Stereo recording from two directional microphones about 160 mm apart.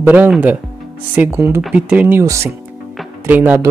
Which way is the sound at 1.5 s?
5° right (ahead or behind).